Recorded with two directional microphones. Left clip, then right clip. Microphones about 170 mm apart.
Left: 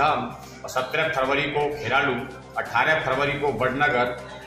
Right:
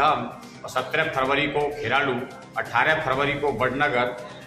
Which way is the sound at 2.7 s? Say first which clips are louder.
Even; 15° right (ahead or behind).